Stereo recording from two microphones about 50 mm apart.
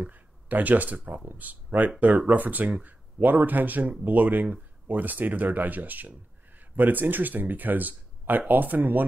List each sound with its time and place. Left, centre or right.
0.0 s speech: right